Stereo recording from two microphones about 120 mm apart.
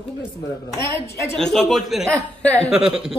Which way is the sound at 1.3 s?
5° left (ahead or behind).